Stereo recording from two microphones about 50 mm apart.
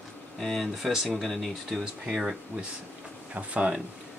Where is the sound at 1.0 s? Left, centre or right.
Centre.